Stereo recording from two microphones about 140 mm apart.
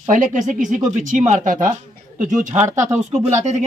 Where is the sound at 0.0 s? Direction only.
65° right (ahead or behind).